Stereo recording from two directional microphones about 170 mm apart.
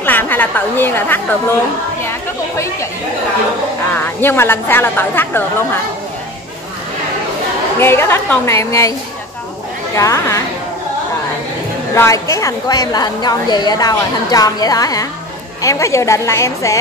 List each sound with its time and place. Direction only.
0.0 s a woman's voice: 10° left (ahead or behind)
2.0 s chatter: 15° left (ahead or behind)
3.9 s a woman's voice: 10° left (ahead or behind)
7.8 s a woman's voice: 15° left (ahead or behind)
9.9 s a woman's voice: 15° left (ahead or behind)
11.9 s a woman's voice: 15° left (ahead or behind)